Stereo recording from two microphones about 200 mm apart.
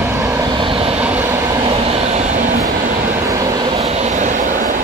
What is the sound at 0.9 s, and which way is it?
Train, 5° right (ahead or behind).